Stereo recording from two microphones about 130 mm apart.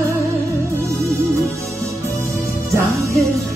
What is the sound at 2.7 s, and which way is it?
Music, 25° right (ahead or behind).